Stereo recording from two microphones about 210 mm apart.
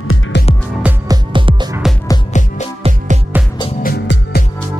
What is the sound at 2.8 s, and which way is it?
Music, 35° right (ahead or behind).